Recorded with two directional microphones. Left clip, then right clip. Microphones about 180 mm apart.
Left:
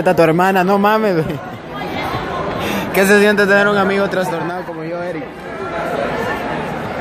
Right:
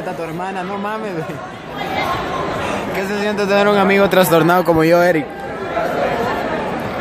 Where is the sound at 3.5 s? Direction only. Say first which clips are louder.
Even; 20° right (ahead or behind).